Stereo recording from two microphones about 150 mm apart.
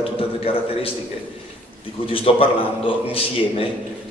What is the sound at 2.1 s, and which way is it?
A man's voice, 35° left (ahead or behind).